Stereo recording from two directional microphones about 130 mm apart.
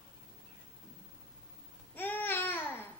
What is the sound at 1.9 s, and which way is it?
Babbling, 15° left (ahead or behind).